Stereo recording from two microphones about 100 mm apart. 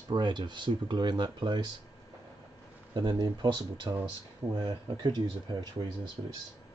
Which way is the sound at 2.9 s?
50° right (ahead or behind).